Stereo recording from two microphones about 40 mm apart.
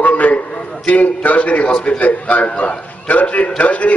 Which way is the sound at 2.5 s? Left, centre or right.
Left.